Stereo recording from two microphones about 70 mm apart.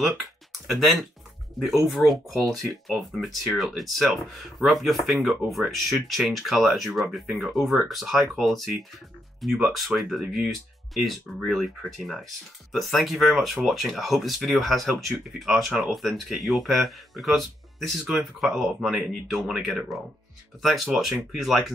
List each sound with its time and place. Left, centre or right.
0.7 s speech: centre